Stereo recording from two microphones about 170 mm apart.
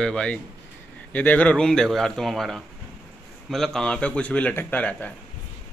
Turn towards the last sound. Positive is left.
turn(degrees=10)  # may be behind; listen again after turning